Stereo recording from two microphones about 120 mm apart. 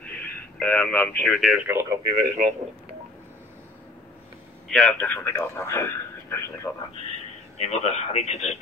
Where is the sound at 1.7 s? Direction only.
20° right (ahead or behind).